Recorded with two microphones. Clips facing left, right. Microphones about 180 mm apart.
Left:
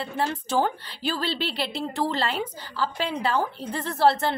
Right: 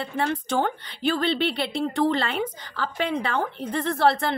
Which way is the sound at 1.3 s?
30° left (ahead or behind).